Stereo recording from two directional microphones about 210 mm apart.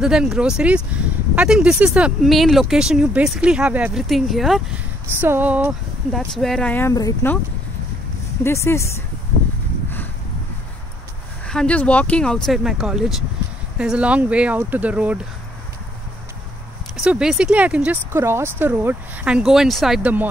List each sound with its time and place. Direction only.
0.0 s speech: centre (ahead or behind); by 7.3 s 15° left (ahead or behind)
8.5 s speech: 10° left (ahead or behind)
11.4 s speech: 5° left (ahead or behind)
16.9 s speech: 5° right (ahead or behind)